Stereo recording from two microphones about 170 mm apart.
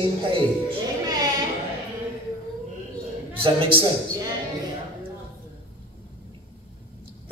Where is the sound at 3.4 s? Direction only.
30° right (ahead or behind).